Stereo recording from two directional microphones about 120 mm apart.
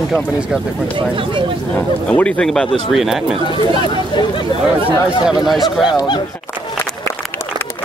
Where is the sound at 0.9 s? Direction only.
45° right (ahead or behind).